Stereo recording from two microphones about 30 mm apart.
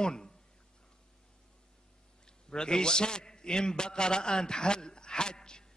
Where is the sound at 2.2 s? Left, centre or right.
Left.